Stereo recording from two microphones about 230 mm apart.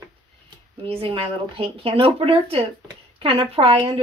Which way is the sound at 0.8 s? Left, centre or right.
Right.